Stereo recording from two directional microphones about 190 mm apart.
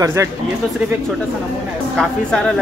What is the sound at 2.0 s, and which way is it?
Speech, centre (ahead or behind).